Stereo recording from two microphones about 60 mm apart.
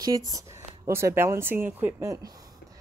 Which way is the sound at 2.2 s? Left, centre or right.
Right.